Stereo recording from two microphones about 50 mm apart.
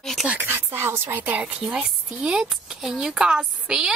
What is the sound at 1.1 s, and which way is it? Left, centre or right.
Speech, right.